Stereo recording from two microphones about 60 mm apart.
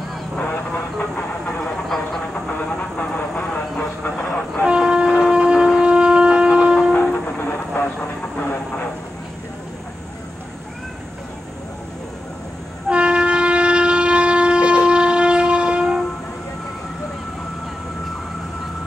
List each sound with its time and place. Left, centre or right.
0.9 s train: centre
3.0 s vehicle: centre
4.6 s shofar: centre
6.9 s train: left
8.4 s vehicle: left
12.8 s train: centre